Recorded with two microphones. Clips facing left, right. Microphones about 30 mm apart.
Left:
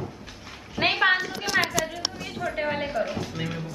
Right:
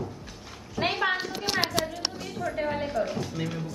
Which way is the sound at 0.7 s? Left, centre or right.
Left.